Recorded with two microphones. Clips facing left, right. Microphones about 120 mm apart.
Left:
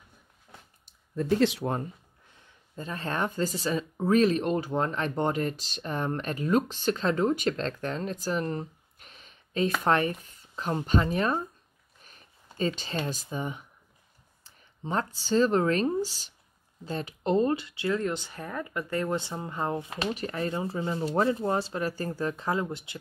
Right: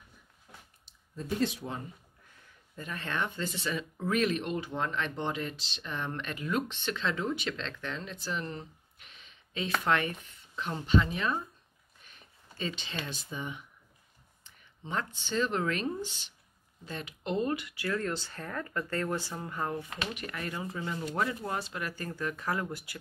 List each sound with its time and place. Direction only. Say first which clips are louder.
0.8 s speech: left 10 dB; 70° left (ahead or behind)
2.7 s speech: left 4 dB; 30° left (ahead or behind)